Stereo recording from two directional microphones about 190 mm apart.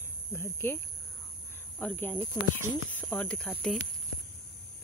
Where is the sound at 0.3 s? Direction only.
10° left (ahead or behind).